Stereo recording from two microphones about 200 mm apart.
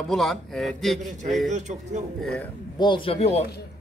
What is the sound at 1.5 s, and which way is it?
Speech, 35° right (ahead or behind).